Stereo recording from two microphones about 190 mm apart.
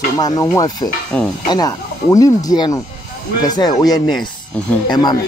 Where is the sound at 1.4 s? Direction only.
20° left (ahead or behind).